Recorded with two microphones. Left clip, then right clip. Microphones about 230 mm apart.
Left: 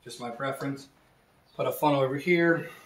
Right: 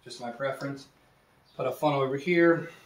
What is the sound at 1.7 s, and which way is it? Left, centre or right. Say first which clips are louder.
Speech: left 2 dB; left.